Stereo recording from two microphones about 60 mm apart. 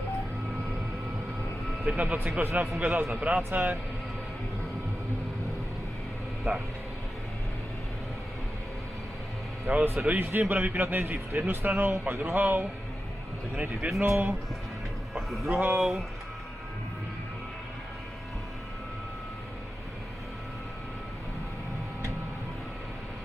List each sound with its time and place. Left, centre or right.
1.9 s speech: right
2.4 s speech: right
3.4 s speech: right
6.5 s speech: right
9.7 s speech: right
14.0 s speech: right
15.1 s music: centre
15.5 s speech: right
15.8 s speech: centre